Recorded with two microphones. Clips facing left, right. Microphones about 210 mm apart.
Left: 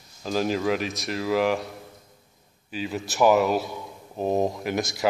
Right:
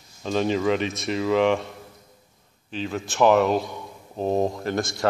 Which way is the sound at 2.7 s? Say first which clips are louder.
Right 1 dB; 5° left (ahead or behind).